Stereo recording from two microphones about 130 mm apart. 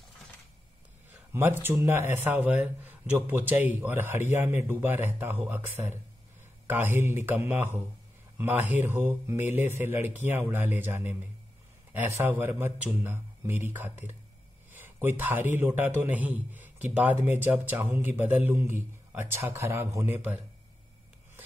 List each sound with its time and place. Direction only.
1.3 s a man's voice: 15° right (ahead or behind)